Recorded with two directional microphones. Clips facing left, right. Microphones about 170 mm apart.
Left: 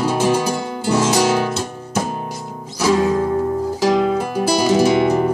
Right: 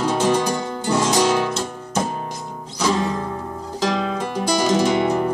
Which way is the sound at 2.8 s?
5° left (ahead or behind).